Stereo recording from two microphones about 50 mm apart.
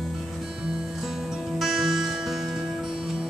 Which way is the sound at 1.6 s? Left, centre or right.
Centre.